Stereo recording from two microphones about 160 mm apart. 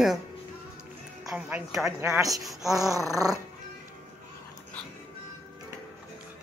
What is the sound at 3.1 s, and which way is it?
Music, 20° right (ahead or behind).